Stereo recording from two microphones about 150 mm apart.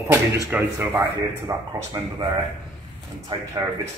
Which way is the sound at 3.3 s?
30° right (ahead or behind).